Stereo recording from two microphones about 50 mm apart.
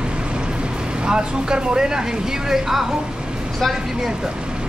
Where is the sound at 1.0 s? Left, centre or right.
Centre.